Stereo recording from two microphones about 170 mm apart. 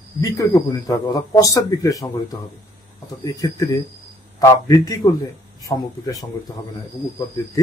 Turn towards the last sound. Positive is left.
turn(degrees=20)  # may be behind; listen again after turning